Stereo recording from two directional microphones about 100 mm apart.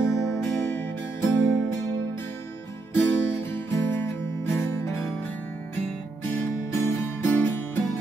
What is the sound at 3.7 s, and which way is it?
Music, 25° left (ahead or behind).